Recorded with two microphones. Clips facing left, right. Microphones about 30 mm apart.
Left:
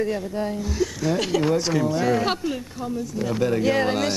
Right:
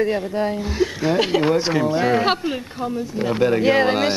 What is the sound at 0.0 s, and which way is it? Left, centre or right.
Speech, right.